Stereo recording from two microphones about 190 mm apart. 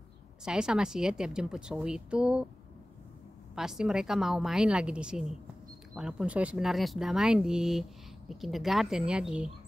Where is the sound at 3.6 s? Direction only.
5° right (ahead or behind).